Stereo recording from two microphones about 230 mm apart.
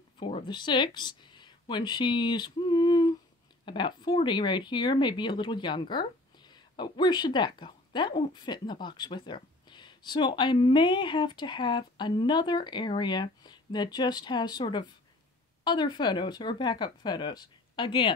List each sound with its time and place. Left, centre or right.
0.2 s speech: left